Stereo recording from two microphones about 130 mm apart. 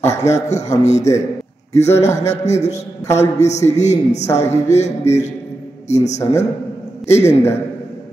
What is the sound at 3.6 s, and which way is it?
A woman's voice, 60° left (ahead or behind).